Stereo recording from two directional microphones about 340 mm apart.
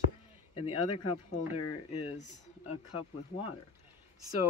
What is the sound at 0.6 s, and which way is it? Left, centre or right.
Speech, left.